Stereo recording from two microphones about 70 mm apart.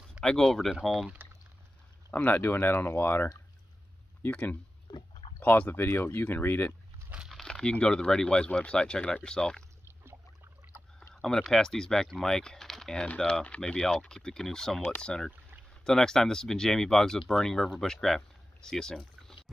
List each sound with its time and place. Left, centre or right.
0.2 s speech: centre
2.1 s speech: left
7.2 s crumpling: centre
7.8 s speech: centre
10.6 s rowboat: right
11.1 s speech: centre